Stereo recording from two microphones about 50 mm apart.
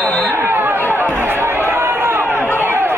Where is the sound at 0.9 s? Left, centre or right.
Right.